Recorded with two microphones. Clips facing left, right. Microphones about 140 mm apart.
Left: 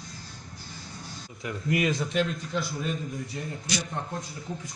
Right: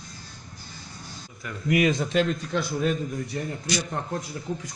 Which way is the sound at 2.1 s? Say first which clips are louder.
Right 4 dB; 75° right (ahead or behind).